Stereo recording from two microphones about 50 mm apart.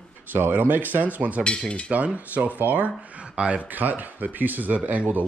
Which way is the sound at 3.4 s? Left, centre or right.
Right.